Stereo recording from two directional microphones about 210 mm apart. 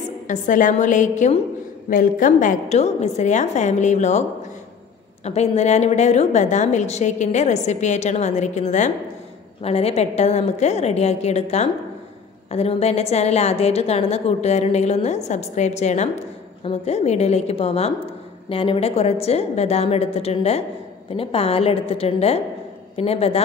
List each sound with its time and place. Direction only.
0.3 s a woman's voice: 40° left (ahead or behind)